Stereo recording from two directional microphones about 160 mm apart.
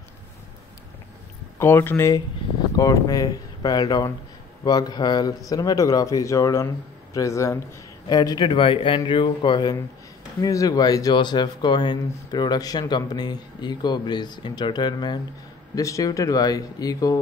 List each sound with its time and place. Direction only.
1.6 s speech: 15° left (ahead or behind)